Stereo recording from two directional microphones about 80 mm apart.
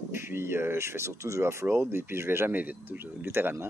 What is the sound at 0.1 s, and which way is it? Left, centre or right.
Speech, right.